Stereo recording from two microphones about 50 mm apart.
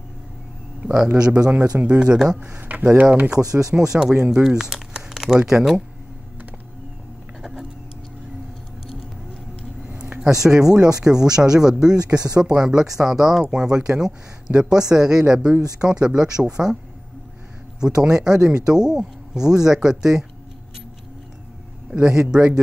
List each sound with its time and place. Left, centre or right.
0.8 s speech: centre
2.4 s speech: right
3.7 s speech: centre
9.8 s a sound: right
10.2 s speech: centre
17.7 s speech: centre
21.9 s speech: centre